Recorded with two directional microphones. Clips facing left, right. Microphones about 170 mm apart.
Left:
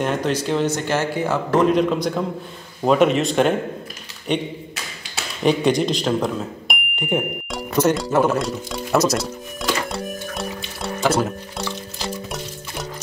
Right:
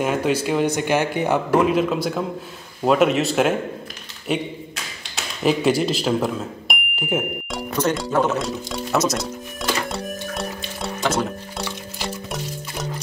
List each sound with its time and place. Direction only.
0.0 s speech: 10° right (ahead or behind)
1.6 s speech: 5° right (ahead or behind)
5.1 s a sound: 5° right (ahead or behind)
11.6 s music: centre (ahead or behind)